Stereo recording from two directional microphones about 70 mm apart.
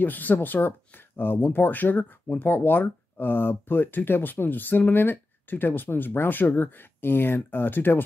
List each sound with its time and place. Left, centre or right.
0.0 s speech: left